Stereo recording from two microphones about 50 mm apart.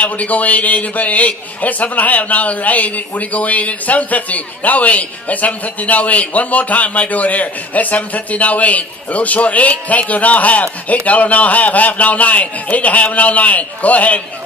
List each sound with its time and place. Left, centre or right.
0.0 s a man's voice: left